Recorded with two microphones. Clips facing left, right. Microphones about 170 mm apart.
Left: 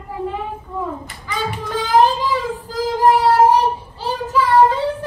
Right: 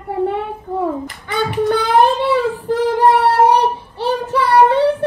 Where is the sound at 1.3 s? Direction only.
70° right (ahead or behind).